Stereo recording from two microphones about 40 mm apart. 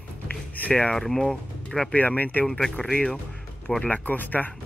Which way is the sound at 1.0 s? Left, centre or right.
Centre.